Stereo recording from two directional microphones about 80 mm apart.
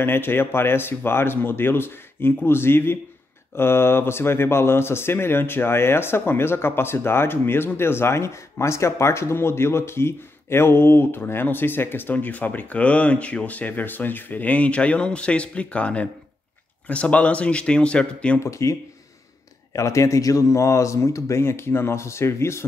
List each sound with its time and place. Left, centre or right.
0.0 s speech: left
18.4 s speech: left